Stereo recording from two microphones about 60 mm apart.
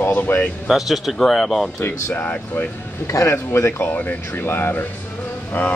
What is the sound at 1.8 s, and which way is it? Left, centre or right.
Speech, left.